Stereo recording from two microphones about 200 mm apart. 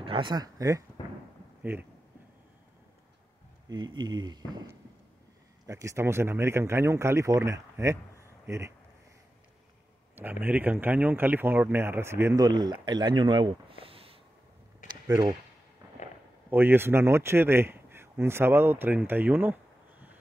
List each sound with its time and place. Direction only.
0.0 s speech: 25° right (ahead or behind); by 1.9 s 10° right (ahead or behind)
3.6 s speech: 20° right (ahead or behind)
5.7 s speech: 15° right (ahead or behind)
10.1 s speech: 10° right (ahead or behind); by 14.1 s 30° right (ahead or behind)
14.9 s a sound: 20° right (ahead or behind)
16.4 s speech: 10° right (ahead or behind)